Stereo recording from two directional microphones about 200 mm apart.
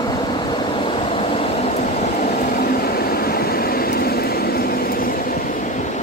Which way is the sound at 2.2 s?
45° left (ahead or behind).